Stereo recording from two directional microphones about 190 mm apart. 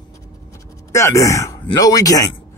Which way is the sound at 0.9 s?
15° left (ahead or behind).